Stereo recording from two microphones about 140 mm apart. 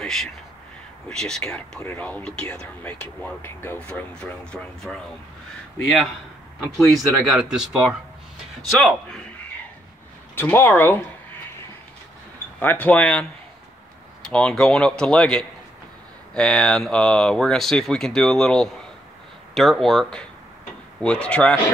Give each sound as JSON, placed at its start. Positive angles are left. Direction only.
{"t": 0.0, "sound": "speech", "side_deg": 5}
{"t": 1.8, "sound": "speech", "side_deg": 15}
{"t": 6.6, "sound": "speech", "side_deg": 0}
{"t": 10.3, "sound": "speech", "side_deg": 15}
{"t": 12.5, "sound": "speech", "side_deg": 10}
{"t": 14.3, "sound": "speech", "side_deg": 5}